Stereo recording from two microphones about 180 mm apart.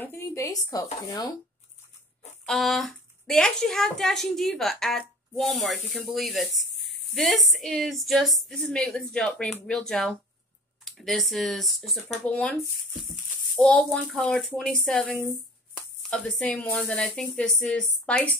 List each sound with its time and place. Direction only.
0.0 s speech: 15° left (ahead or behind)
2.4 s speech: centre (ahead or behind)
13.6 s speech: 5° left (ahead or behind)